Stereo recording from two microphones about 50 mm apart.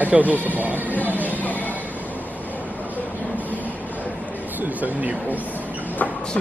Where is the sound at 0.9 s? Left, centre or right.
Left.